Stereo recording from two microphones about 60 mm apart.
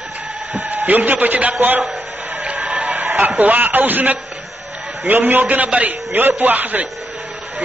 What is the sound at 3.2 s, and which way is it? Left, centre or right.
A man's voice, right.